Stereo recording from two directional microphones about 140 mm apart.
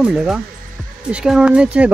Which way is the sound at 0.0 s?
5° right (ahead or behind).